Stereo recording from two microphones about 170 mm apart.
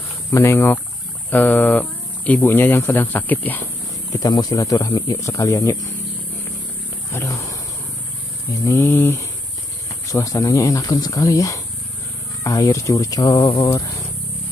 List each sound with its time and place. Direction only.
0.3 s speech: 15° left (ahead or behind)
4.2 s speech: 20° left (ahead or behind)
7.1 s roaring cats: 15° left (ahead or behind)
8.5 s speech: 15° left (ahead or behind)